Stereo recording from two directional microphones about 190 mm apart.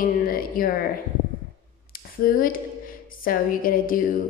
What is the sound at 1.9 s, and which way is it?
Speech, 50° left (ahead or behind).